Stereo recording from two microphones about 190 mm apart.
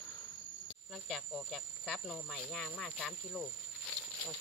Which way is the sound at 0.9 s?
Centre (ahead or behind).